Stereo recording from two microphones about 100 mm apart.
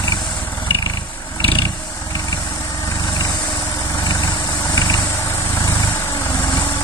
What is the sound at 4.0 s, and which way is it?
Vehicle, 40° left (ahead or behind).